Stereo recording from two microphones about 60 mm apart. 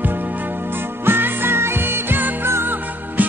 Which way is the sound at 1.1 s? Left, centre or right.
Right.